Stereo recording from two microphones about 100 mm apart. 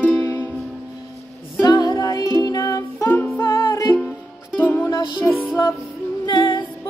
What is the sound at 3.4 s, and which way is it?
Music, 20° left (ahead or behind).